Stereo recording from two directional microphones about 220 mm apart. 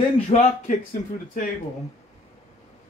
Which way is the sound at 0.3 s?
30° left (ahead or behind).